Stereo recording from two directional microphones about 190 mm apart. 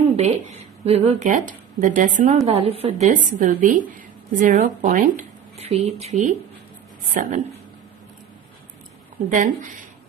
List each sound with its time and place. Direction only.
0.1 s a woman's voice: 35° right (ahead or behind)
9.3 s a woman's voice: 40° right (ahead or behind)